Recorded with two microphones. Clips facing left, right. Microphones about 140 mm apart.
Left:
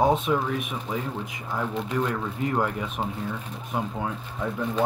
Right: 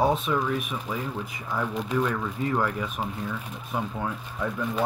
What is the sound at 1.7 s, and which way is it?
Speech, 10° right (ahead or behind).